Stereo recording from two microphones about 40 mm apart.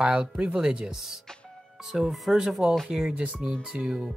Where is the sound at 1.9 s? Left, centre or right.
Centre.